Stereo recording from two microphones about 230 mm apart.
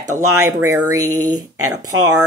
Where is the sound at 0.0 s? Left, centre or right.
Centre.